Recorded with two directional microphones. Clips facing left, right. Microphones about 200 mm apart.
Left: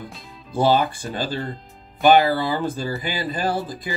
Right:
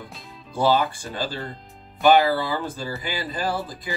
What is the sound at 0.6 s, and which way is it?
Speech, 20° left (ahead or behind).